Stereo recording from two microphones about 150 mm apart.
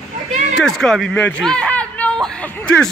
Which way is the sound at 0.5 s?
5° left (ahead or behind).